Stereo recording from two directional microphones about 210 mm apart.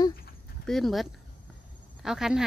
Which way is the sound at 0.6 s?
Centre (ahead or behind).